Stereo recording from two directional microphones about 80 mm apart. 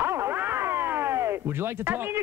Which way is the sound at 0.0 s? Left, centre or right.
Right.